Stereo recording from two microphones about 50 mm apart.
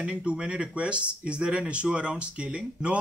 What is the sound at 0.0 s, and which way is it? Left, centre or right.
Speech, right.